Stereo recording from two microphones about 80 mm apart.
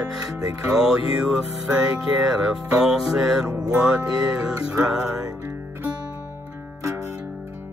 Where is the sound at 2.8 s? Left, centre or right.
Centre.